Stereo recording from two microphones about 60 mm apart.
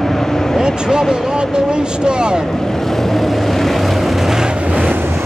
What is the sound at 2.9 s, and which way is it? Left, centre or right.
Vehicle, centre.